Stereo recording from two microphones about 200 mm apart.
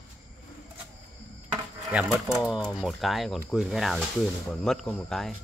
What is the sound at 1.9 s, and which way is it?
Speech, 5° right (ahead or behind).